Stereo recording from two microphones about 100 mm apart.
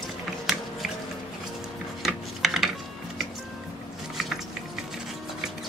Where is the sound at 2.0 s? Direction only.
5° right (ahead or behind).